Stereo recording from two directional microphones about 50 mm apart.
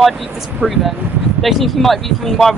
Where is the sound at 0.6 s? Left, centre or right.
Centre.